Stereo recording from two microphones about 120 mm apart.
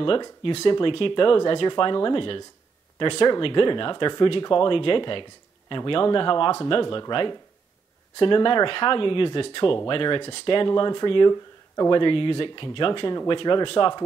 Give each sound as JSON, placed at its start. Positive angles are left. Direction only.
{"t": 0.4, "sound": "speech", "side_deg": 50}